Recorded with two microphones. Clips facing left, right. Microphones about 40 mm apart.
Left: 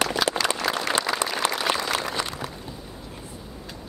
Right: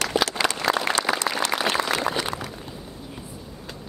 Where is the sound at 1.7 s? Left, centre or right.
Right.